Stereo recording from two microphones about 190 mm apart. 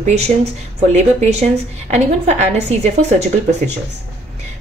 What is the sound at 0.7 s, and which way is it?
A woman's voice, 35° right (ahead or behind).